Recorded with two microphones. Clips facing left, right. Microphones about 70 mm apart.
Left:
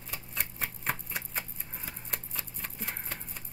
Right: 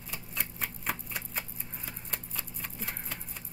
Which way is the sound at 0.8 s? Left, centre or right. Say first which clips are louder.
Left 2 dB; centre.